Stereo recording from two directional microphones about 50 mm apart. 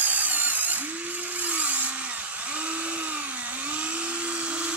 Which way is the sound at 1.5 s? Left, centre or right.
Right.